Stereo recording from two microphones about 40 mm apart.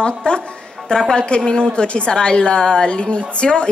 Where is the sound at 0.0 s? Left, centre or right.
Left.